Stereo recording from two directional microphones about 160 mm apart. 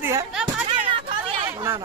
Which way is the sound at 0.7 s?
30° right (ahead or behind).